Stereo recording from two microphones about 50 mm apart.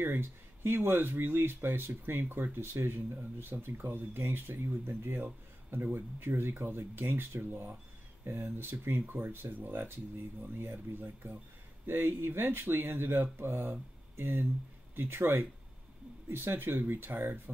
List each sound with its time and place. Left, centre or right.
0.0 s speech: right
5.2 s speech: right